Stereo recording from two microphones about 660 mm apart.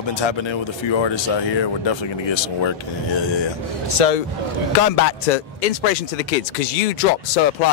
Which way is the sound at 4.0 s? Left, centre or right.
Left.